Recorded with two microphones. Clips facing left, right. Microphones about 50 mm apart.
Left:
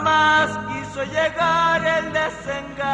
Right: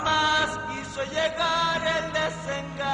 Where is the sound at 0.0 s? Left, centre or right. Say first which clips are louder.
Left 7 dB; left.